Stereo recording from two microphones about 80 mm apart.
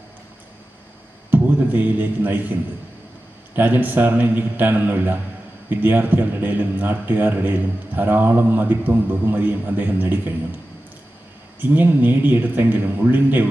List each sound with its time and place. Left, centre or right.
1.3 s a man's voice: right
3.5 s a man's voice: right
11.7 s a man's voice: right